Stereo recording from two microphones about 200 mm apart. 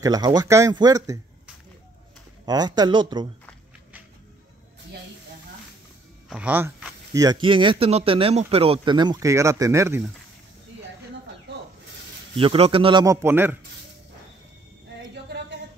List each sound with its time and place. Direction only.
0.0 s speech: 20° right (ahead or behind)
2.4 s speech: 20° right (ahead or behind)
6.2 s speech: 5° right (ahead or behind)
12.4 s speech: 30° right (ahead or behind); by 13.6 s 10° right (ahead or behind)